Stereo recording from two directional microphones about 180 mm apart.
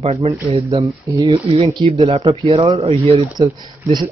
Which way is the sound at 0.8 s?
15° right (ahead or behind).